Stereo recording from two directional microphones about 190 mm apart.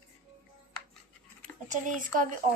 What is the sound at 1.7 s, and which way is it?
Speech, 45° right (ahead or behind).